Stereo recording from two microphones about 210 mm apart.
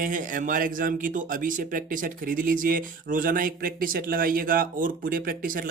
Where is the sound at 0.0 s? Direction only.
40° right (ahead or behind).